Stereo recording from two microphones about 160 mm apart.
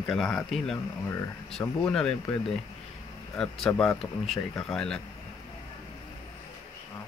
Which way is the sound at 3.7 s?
15° left (ahead or behind).